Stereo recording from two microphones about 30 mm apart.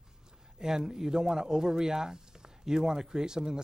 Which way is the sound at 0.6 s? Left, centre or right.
Right.